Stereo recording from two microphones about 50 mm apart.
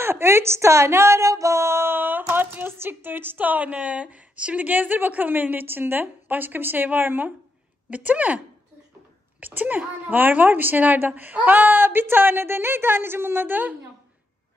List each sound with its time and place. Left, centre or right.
0.0 s a woman's voice: right
7.9 s speech: right
9.4 s a woman's voice: right